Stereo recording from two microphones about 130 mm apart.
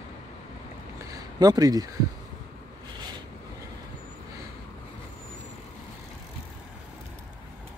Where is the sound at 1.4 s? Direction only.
30° right (ahead or behind).